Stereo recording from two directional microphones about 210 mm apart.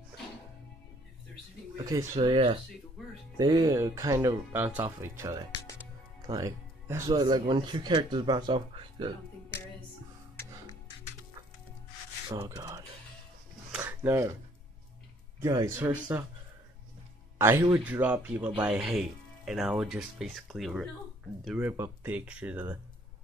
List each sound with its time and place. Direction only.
1.8 s speech: 15° right (ahead or behind)
2.1 s speech: 25° right (ahead or behind)
12.4 s speech: 15° right (ahead or behind)
13.7 s a sound: 10° right (ahead or behind)
15.4 s speech: 15° right (ahead or behind)
17.4 s speech: 10° right (ahead or behind)